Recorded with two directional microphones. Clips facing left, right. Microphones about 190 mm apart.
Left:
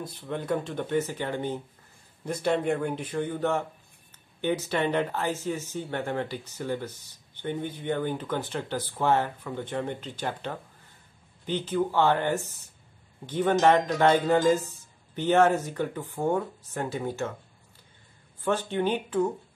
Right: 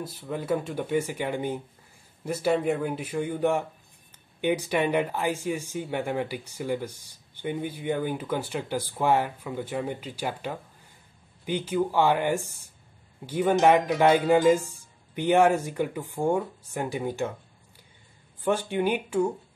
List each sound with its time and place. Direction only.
0.0 s speech: 5° right (ahead or behind)
18.4 s speech: 10° right (ahead or behind)